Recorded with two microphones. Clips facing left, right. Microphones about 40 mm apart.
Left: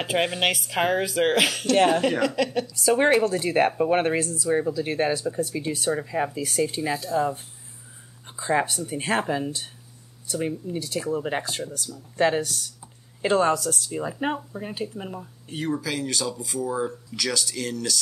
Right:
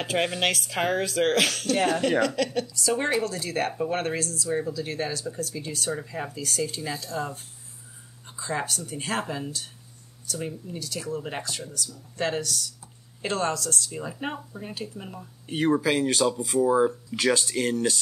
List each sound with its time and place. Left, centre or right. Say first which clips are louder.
0.0 s speech: left 2 dB; centre
2.7 s speech: left 6 dB; left
6.9 s speech: left 7 dB; centre
8.3 s speech: left 6 dB; left
15.4 s speech: right 5 dB; right